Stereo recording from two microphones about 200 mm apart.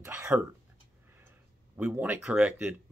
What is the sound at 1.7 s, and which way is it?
Speech, 10° right (ahead or behind).